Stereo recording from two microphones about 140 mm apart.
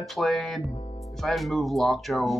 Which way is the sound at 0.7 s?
45° left (ahead or behind).